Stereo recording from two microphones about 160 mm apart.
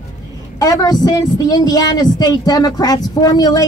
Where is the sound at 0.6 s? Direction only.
25° left (ahead or behind).